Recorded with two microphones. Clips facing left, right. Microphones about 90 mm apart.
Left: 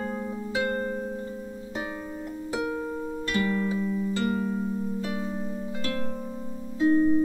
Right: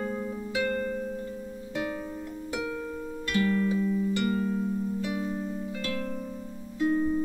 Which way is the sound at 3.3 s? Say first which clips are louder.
Right 1 dB; 20° left (ahead or behind).